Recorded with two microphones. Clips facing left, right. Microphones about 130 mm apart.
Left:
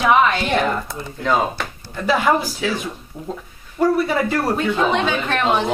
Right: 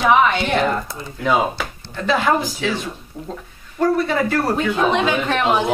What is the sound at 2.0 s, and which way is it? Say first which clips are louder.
Speech: even; 5° left (ahead or behind).